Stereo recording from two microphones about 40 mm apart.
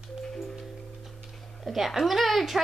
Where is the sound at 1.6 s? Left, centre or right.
Centre.